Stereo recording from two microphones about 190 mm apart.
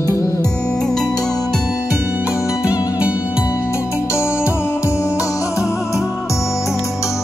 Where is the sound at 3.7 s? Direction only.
15° left (ahead or behind).